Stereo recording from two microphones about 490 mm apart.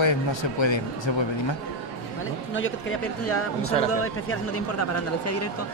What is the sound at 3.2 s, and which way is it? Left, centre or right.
Speech, left.